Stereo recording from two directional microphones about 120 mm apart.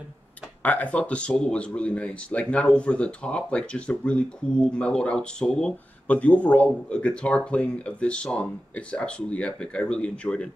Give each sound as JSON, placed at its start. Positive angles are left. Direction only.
{"t": 0.6, "sound": "speech", "side_deg": 10}